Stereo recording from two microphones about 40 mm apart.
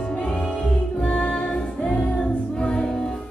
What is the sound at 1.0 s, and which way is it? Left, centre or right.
Music, left.